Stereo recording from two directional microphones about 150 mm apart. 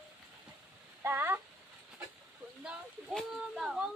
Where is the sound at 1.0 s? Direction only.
15° right (ahead or behind).